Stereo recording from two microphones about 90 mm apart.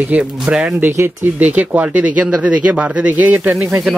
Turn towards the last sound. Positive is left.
turn(degrees=-15)  # may be behind; listen again after turning